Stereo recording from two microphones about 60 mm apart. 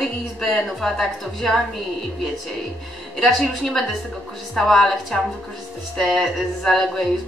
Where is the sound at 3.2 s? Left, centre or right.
Centre.